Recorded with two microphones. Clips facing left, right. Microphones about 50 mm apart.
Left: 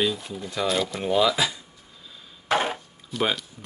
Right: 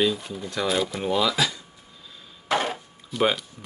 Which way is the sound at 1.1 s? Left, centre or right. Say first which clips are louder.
Left 3 dB; centre.